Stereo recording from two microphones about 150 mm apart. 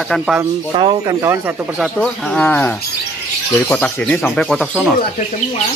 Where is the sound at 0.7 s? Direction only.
30° right (ahead or behind).